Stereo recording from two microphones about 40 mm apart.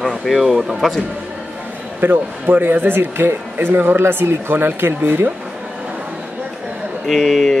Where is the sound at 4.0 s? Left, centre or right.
Right.